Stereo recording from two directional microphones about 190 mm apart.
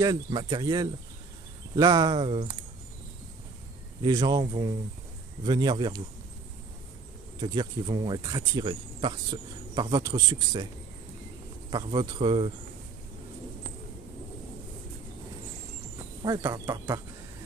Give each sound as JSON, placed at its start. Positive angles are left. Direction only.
{"t": 0.0, "sound": "speech", "side_deg": -20}
{"t": 4.0, "sound": "speech", "side_deg": -20}
{"t": 7.3, "sound": "speech", "side_deg": -20}
{"t": 11.7, "sound": "speech", "side_deg": -25}
{"t": 16.3, "sound": "speech", "side_deg": -20}